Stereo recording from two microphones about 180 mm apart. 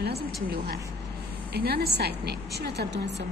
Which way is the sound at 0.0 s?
65° right (ahead or behind).